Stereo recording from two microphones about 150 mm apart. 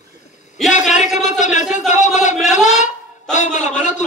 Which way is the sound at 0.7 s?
55° left (ahead or behind).